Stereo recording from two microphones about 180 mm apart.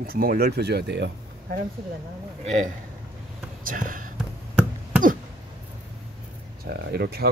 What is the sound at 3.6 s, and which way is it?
Speech, 50° right (ahead or behind).